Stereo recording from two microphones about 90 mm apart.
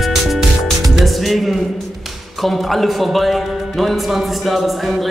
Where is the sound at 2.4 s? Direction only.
Centre (ahead or behind).